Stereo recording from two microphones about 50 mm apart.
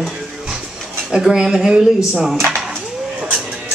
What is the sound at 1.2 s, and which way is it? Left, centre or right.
Speech, centre.